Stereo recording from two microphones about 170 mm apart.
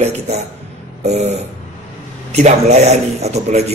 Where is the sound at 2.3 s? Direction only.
40° right (ahead or behind).